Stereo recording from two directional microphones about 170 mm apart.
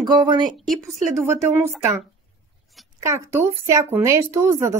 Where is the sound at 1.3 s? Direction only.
15° right (ahead or behind).